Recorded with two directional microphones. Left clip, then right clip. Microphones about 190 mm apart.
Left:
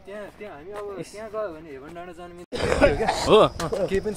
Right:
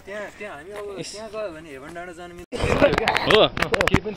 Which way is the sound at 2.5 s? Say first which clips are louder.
Right 1 dB; 55° right (ahead or behind).